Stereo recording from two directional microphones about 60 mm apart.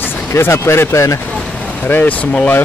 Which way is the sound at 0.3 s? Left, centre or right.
Left.